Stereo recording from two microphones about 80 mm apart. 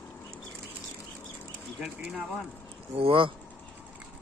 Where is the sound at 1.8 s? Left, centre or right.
Centre.